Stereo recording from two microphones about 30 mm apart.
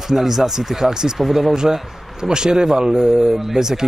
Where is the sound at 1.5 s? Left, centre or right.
Centre.